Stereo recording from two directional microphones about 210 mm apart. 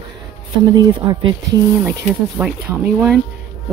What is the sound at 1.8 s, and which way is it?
Speech, 5° right (ahead or behind).